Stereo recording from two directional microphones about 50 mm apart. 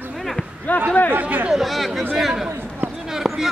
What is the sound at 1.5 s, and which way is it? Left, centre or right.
A man's voice, centre.